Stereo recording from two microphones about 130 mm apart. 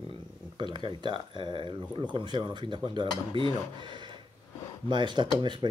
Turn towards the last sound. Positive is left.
turn(degrees=-35)  # may be behind; listen again after turning